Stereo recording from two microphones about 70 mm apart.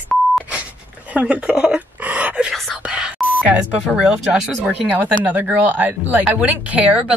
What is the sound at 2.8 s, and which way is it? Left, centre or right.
Whispering, centre.